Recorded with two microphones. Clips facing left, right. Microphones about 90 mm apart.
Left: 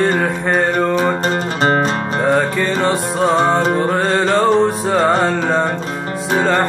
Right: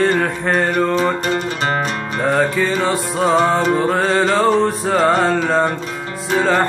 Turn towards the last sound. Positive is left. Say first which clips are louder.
# left 1 dB
turn(degrees=0)  # may be behind; listen again after turning